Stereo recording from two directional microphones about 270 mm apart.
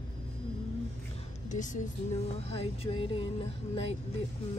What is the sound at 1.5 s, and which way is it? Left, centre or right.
Speech, left.